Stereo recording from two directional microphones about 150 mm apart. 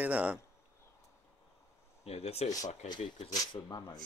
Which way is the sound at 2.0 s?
45° left (ahead or behind).